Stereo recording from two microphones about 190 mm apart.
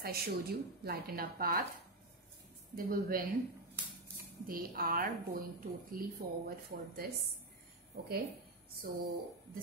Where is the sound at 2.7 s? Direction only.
50° right (ahead or behind).